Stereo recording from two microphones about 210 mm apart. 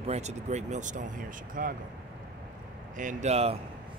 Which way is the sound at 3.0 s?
35° right (ahead or behind).